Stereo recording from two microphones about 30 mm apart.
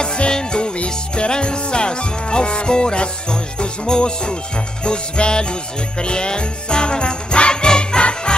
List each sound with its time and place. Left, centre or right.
0.0 s music: left
4.8 s jingle bell: left